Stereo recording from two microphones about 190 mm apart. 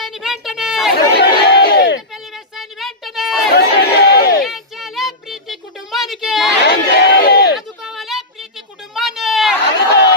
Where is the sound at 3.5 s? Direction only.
55° left (ahead or behind).